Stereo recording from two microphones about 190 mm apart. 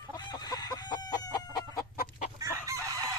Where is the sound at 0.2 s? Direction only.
20° left (ahead or behind).